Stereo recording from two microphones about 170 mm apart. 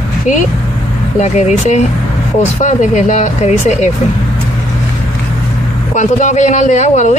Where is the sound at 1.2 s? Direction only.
45° left (ahead or behind).